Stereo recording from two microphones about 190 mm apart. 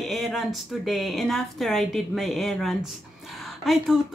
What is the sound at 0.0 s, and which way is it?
A woman's voice, centre (ahead or behind).